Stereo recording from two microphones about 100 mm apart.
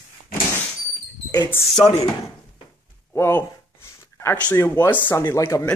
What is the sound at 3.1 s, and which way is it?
Speech, 25° left (ahead or behind).